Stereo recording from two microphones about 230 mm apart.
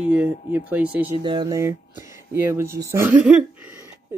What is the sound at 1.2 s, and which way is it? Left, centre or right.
Speech, centre.